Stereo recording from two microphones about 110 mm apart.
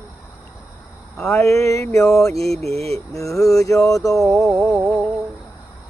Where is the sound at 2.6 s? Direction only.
70° right (ahead or behind).